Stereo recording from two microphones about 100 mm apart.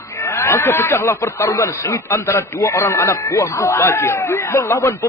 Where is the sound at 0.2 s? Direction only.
25° left (ahead or behind).